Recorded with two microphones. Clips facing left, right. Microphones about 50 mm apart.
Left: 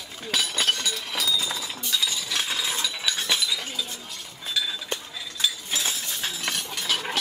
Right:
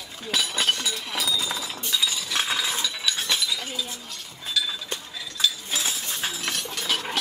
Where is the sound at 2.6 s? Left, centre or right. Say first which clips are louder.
Right 1 dB; centre.